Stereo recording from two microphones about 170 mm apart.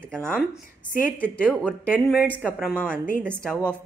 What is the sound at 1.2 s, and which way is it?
Speech, 5° left (ahead or behind).